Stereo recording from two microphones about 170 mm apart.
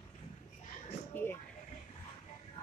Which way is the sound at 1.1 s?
10° left (ahead or behind).